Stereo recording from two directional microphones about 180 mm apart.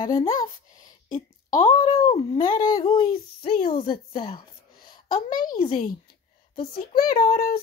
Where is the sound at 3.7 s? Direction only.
30° left (ahead or behind).